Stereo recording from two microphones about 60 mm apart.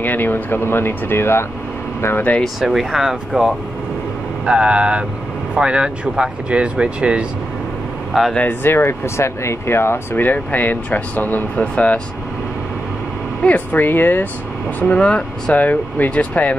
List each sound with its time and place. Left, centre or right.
0.0 s speech: left
2.4 s speech: centre
8.6 s speech: left
11.5 s speech: centre
13.4 s speech: left
14.8 s speech: left
15.6 s speech: left